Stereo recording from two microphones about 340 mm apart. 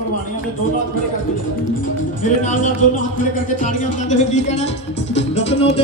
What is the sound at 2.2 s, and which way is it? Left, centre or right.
Speech, left.